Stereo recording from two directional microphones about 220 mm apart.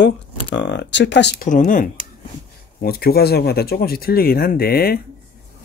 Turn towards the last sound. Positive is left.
turn(degrees=45)  # may be behind; listen again after turning